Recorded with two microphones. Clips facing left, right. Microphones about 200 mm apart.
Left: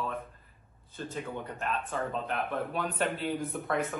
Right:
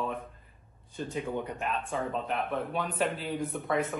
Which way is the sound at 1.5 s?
Centre (ahead or behind).